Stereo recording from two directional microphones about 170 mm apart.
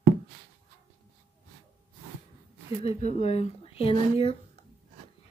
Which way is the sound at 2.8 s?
35° left (ahead or behind).